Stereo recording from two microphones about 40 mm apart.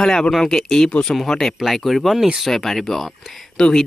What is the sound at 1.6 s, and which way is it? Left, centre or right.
Speech, centre.